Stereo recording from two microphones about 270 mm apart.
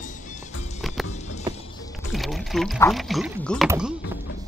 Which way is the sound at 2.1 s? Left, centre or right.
Centre.